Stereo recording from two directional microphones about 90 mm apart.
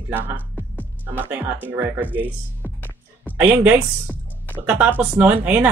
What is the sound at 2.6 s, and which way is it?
Music, 20° left (ahead or behind).